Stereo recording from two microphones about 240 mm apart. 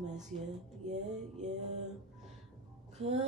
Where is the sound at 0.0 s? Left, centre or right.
Right.